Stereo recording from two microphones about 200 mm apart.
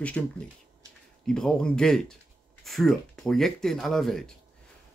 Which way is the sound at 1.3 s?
5° left (ahead or behind).